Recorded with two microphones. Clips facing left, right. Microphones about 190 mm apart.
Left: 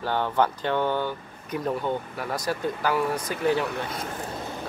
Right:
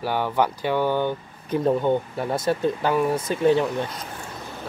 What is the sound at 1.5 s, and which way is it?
Speech, 30° right (ahead or behind).